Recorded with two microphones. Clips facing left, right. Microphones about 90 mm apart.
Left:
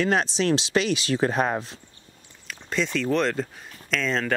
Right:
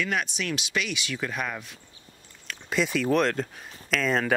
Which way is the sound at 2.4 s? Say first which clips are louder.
Even; 5° right (ahead or behind).